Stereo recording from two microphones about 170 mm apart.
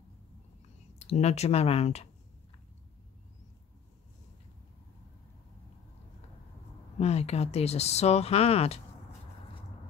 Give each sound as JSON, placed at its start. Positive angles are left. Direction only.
{"t": 0.9, "sound": "speech", "side_deg": 40}
{"t": 7.0, "sound": "speech", "side_deg": 40}